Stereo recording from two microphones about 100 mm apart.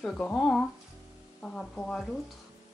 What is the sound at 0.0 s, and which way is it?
Speech, 10° left (ahead or behind).